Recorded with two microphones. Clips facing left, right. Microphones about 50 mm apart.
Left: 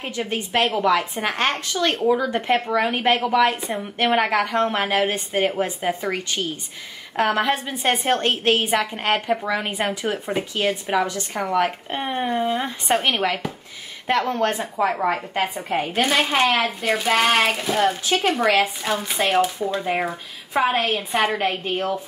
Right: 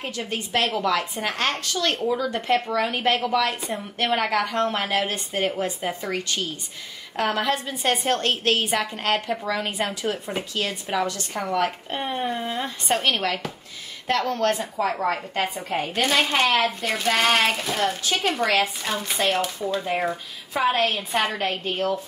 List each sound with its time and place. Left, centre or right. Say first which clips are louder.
0.1 s a woman's voice: left 4 dB; left
11.3 s a woman's voice: left 3 dB; centre
21.5 s speech: left 1 dB; centre